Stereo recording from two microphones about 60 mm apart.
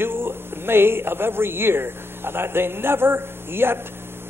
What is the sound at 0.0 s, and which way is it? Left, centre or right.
A man's voice, right.